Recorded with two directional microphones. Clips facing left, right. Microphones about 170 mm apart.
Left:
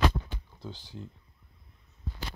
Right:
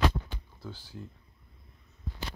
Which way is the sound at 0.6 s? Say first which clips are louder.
Left 1 dB; 20° left (ahead or behind).